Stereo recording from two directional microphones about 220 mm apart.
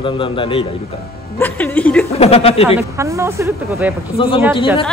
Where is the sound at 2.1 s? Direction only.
25° left (ahead or behind).